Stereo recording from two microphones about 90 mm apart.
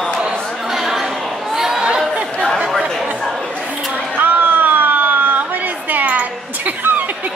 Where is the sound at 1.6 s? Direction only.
5° right (ahead or behind).